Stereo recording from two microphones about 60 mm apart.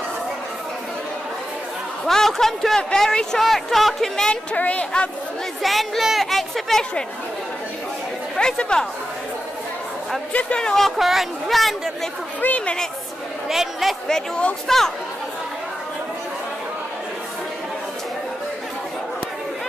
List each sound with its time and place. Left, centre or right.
2.0 s speech: centre
4.3 s a woman's voice: left
5.6 s a child's voice: centre
8.4 s speech: centre
10.3 s speech: centre
11.0 s a child's voice: centre
12.4 s a woman's voice: left
13.5 s a man's voice: centre
14.0 s speech: centre